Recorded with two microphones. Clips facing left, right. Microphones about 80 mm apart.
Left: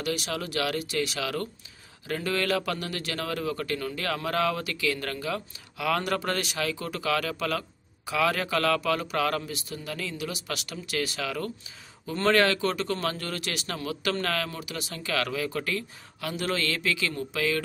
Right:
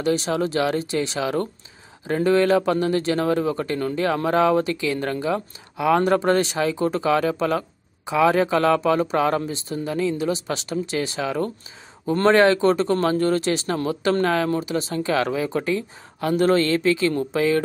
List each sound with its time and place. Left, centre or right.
0.0 s speech: right
16.3 s speech: right